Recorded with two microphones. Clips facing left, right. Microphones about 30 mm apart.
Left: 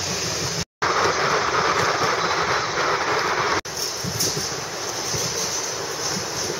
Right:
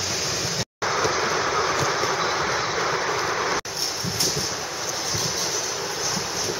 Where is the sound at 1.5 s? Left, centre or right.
Left.